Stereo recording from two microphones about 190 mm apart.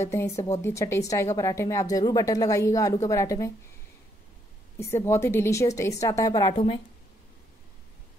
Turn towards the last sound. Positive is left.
turn(degrees=25)  # may be behind; listen again after turning